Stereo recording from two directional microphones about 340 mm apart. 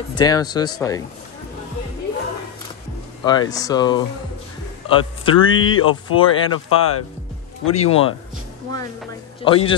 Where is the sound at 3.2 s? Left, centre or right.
Centre.